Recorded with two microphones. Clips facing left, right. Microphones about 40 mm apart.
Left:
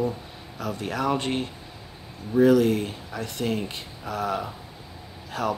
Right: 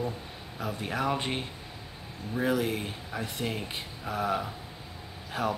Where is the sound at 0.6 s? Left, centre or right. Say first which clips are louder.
Left 4 dB; centre.